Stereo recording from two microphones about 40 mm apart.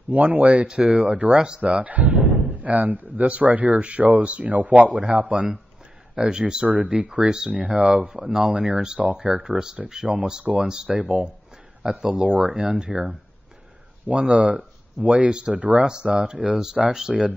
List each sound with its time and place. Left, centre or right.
0.1 s speech: right
0.7 s speech: right
7.5 s speech: right
8.2 s speech: centre
8.5 s speech: right
16.5 s speech: centre
17.1 s speech: centre